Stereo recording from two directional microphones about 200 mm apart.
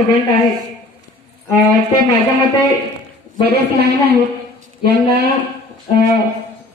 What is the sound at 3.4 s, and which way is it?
A man's voice, 50° right (ahead or behind).